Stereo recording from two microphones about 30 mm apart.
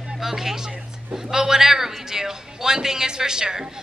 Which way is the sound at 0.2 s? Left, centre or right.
Centre.